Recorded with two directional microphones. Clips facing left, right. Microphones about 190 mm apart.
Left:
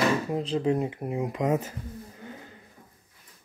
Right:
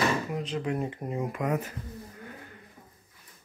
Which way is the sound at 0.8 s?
15° left (ahead or behind).